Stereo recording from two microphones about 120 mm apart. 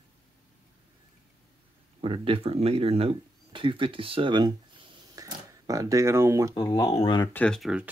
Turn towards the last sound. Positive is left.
turn(degrees=5)  # may be behind; listen again after turning